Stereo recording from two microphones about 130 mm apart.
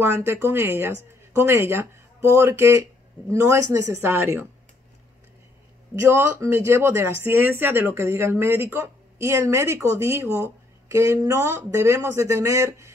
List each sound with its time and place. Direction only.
0.0 s speech: 15° right (ahead or behind)
5.9 s speech: 20° right (ahead or behind)